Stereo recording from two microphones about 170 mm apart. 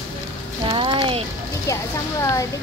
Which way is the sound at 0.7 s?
30° right (ahead or behind).